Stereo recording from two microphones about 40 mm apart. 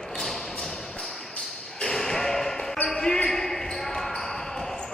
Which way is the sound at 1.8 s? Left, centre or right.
Centre.